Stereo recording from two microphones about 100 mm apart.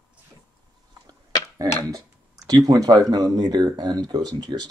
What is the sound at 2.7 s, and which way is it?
Speech, 40° right (ahead or behind).